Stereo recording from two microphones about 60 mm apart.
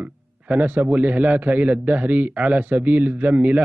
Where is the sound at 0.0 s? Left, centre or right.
Right.